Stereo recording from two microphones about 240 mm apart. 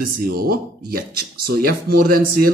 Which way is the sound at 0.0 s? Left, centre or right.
Right.